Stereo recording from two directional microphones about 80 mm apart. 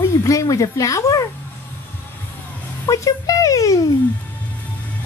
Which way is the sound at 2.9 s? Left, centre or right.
Left.